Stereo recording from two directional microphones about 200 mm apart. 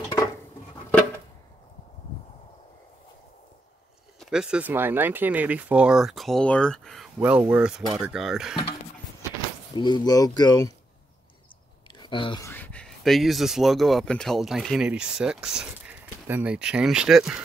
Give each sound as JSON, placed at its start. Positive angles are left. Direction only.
{"t": 4.2, "sound": "speech", "side_deg": -5}
{"t": 9.8, "sound": "speech", "side_deg": 20}
{"t": 12.0, "sound": "a sound", "side_deg": 25}
{"t": 12.4, "sound": "speech", "side_deg": 10}